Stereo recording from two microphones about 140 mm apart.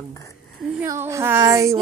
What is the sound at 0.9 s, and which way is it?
Speech, 20° right (ahead or behind).